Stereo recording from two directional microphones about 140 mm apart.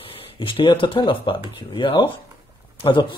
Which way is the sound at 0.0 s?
40° left (ahead or behind).